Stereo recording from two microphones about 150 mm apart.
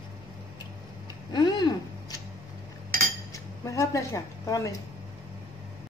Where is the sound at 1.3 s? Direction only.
25° left (ahead or behind).